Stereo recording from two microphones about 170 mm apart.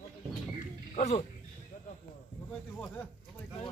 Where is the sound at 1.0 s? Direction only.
40° left (ahead or behind).